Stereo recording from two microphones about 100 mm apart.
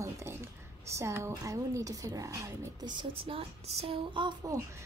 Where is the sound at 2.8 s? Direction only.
60° right (ahead or behind).